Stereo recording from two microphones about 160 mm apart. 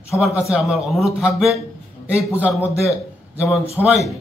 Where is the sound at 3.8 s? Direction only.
10° left (ahead or behind).